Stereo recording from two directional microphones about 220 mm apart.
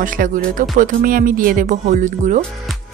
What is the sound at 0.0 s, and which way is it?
Speech, 40° right (ahead or behind).